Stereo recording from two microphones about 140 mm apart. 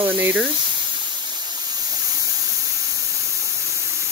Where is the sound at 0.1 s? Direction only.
10° right (ahead or behind).